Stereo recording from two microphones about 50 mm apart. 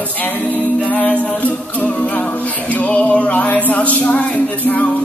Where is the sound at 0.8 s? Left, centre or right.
Left.